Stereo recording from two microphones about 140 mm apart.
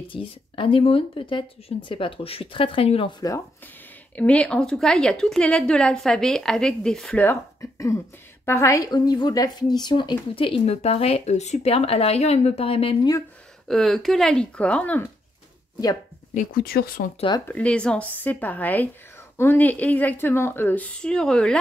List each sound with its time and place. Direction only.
0.1 s speech: 40° left (ahead or behind)
3.2 s speech: 25° left (ahead or behind)
4.1 s a woman's voice: 10° left (ahead or behind); by 12.9 s 40° left (ahead or behind)
13.7 s a woman's voice: centre (ahead or behind)
16.3 s speech: 90° left
17.5 s a woman's voice: 10° left (ahead or behind)